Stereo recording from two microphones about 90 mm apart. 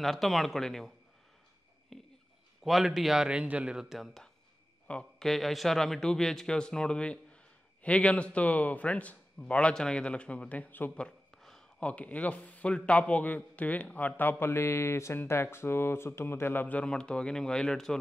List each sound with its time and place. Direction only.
0.0 s a man's voice: centre (ahead or behind)
1.9 s a sound: 5° left (ahead or behind)
2.6 s a man's voice: 5° right (ahead or behind); by 11.1 s 20° left (ahead or behind)
11.1 s speech: 10° left (ahead or behind)